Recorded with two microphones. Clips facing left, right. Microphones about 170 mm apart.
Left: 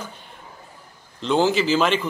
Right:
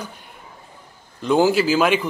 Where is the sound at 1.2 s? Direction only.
10° right (ahead or behind).